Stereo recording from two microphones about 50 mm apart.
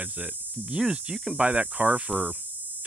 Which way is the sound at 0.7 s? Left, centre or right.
Centre.